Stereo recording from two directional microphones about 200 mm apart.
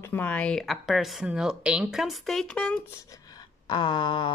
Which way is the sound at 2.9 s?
15° left (ahead or behind).